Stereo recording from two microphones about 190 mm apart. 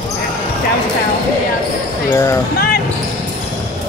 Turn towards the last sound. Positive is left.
turn(degrees=55)  # may be behind; listen again after turning